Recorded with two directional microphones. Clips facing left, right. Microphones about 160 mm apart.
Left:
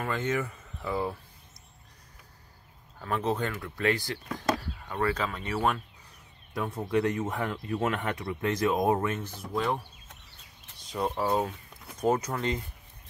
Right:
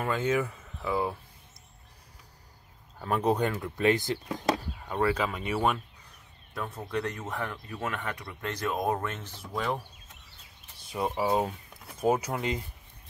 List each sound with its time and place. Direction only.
0.0 s speech: 10° right (ahead or behind)
3.0 s speech: 15° right (ahead or behind)
6.9 s speech: 15° left (ahead or behind)
8.3 s speech: 10° left (ahead or behind)
10.9 s speech: 5° right (ahead or behind)